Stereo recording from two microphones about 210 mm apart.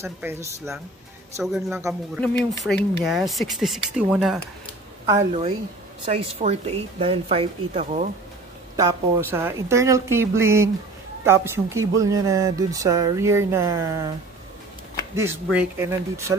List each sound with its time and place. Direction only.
0.0 s speech: 10° right (ahead or behind)
1.4 s speech: centre (ahead or behind)
5.3 s speech: 25° right (ahead or behind)
8.7 s speech: 15° right (ahead or behind)
15.5 s speech: 10° right (ahead or behind)